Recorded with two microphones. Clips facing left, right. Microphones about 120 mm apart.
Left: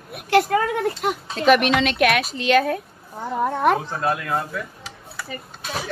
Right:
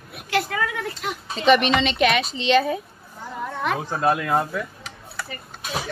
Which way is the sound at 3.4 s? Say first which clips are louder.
Left 7 dB; 50° left (ahead or behind).